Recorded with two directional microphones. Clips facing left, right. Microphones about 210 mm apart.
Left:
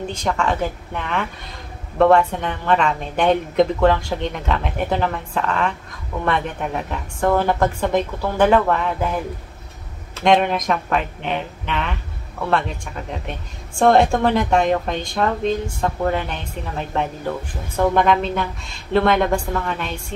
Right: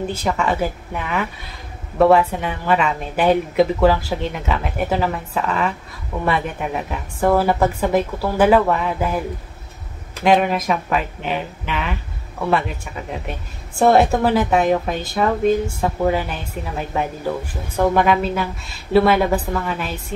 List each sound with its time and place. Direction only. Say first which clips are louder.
0.0 s speech: right 1 dB; 5° right (ahead or behind)
10.2 s speech: even; 5° right (ahead or behind)